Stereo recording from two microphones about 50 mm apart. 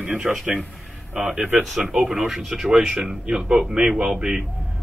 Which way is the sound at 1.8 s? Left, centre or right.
Centre.